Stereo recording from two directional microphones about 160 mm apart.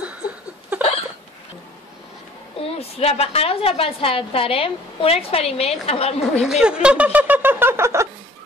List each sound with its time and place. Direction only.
0.7 s hiccup: 10° right (ahead or behind)
2.8 s a woman's voice: 40° left (ahead or behind)
6.4 s speech: 5° right (ahead or behind)